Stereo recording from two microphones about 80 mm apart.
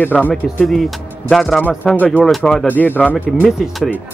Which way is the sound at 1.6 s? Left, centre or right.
Centre.